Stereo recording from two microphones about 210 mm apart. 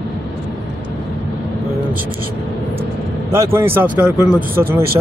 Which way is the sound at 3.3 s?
10° right (ahead or behind).